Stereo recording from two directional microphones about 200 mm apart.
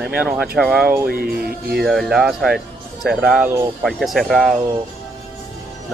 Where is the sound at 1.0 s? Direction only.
50° right (ahead or behind).